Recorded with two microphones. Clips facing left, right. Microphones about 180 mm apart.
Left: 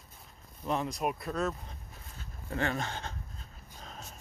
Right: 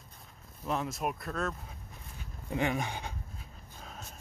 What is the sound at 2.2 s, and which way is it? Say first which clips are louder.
Pant: right 2 dB; 15° right (ahead or behind).